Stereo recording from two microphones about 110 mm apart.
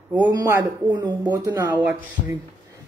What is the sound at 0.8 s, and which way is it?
Speech, 35° right (ahead or behind).